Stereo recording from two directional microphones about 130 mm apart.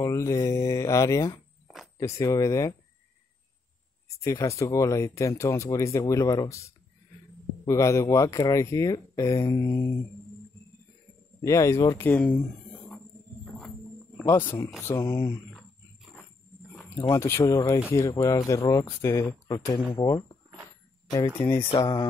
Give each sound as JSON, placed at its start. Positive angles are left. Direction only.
{"t": 0.0, "sound": "speech", "side_deg": 25}
{"t": 4.2, "sound": "speech", "side_deg": 25}
{"t": 11.4, "sound": "speech", "side_deg": 25}
{"t": 12.1, "sound": "speech", "side_deg": 10}
{"t": 14.2, "sound": "speech", "side_deg": 20}
{"t": 17.1, "sound": "speech", "side_deg": 20}
{"t": 19.9, "sound": "speech", "side_deg": 30}
{"t": 21.3, "sound": "speech", "side_deg": 15}